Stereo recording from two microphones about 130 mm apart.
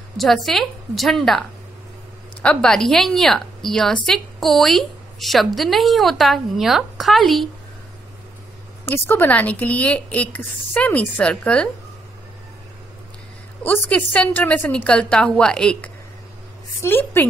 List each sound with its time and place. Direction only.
0.2 s a woman's voice: centre (ahead or behind)
2.4 s a woman's voice: 5° left (ahead or behind)
8.8 s speech: 15° left (ahead or behind)
13.7 s speech: 10° left (ahead or behind)